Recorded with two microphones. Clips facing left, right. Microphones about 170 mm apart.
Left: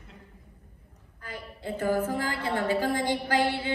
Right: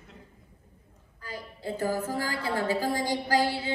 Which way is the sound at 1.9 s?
55° left (ahead or behind).